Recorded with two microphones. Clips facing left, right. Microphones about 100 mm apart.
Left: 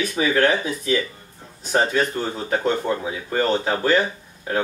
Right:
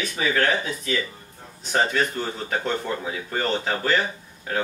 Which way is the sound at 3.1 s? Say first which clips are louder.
Left 4 dB; 15° left (ahead or behind).